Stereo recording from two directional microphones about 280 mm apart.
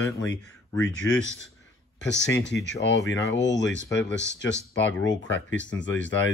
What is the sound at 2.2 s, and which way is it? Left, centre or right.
Speech, left.